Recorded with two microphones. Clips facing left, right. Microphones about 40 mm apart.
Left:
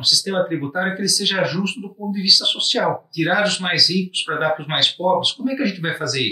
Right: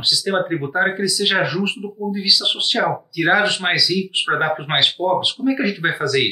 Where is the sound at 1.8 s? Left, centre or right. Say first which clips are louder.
Right 1 dB; centre.